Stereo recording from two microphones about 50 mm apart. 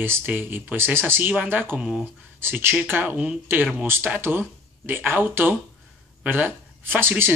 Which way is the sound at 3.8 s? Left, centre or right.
Right.